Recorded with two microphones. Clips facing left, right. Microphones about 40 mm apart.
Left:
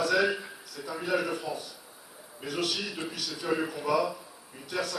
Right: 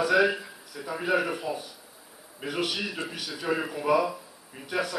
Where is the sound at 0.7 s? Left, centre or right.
Right.